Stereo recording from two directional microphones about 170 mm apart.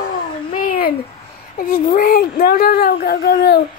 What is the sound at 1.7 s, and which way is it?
Speech, 60° left (ahead or behind).